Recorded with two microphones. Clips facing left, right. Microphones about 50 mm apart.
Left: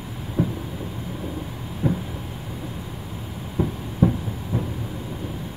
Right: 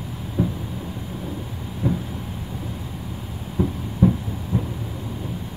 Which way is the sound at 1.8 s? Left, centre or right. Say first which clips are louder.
Even; centre.